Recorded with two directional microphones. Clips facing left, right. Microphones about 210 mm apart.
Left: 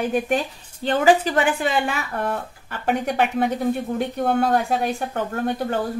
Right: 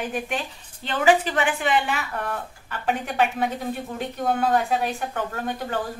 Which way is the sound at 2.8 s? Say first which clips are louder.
Left 2 dB; 45° left (ahead or behind).